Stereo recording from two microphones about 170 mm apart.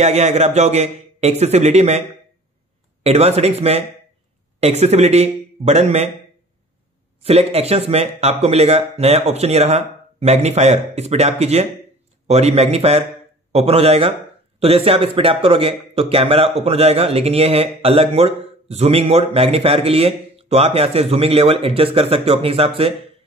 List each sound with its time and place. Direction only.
0.0 s speech: 40° right (ahead or behind)
7.2 s speech: 35° right (ahead or behind)